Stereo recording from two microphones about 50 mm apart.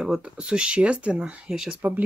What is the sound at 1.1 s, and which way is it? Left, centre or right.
Speech, centre.